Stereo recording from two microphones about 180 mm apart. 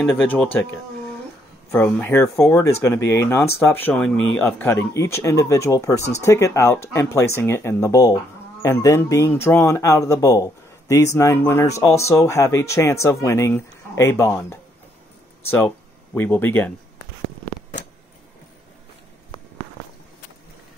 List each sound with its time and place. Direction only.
0.0 s speech: 10° left (ahead or behind)
16.2 s speech: 10° left (ahead or behind)